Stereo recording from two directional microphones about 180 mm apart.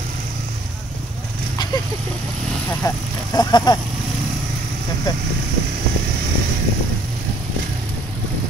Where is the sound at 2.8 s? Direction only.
20° left (ahead or behind).